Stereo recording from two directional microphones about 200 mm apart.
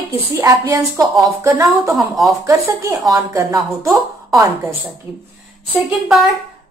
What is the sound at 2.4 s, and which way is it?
Speech, 15° right (ahead or behind).